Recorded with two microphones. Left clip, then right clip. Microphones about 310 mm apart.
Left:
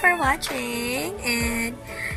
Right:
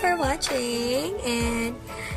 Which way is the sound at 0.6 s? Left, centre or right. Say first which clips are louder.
Right 1 dB; right.